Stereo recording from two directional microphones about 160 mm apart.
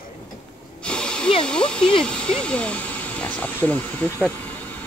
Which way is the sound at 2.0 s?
5° left (ahead or behind).